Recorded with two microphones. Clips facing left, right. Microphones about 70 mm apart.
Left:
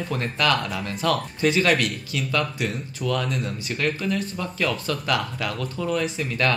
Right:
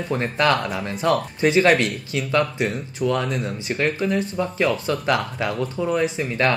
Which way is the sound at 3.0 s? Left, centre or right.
Centre.